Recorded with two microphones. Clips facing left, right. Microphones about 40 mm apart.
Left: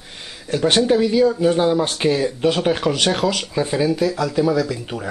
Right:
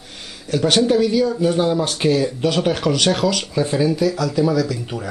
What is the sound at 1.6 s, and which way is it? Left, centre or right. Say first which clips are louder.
Speech: left 1 dB; centre.